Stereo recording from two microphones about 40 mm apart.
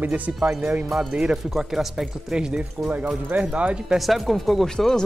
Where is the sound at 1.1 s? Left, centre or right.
Right.